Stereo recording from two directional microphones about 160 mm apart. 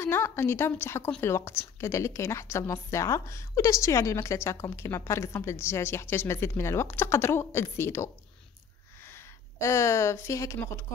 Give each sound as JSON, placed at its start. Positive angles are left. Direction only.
{"t": 0.0, "sound": "a woman's voice", "side_deg": 15}